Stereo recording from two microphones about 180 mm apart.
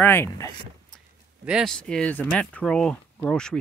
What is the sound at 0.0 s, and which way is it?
Speech, 10° left (ahead or behind).